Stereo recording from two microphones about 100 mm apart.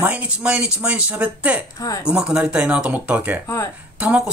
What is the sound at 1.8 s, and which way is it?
Speech, 35° left (ahead or behind).